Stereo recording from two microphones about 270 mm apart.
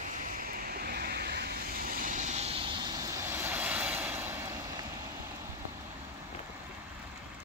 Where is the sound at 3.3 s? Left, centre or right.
Centre.